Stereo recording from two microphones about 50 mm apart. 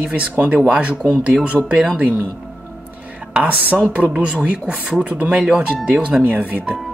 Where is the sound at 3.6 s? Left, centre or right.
Right.